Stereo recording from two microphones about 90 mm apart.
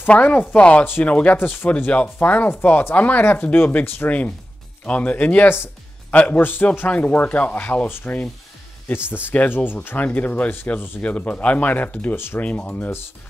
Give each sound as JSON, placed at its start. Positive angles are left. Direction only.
{"t": 0.1, "sound": "speech", "side_deg": 15}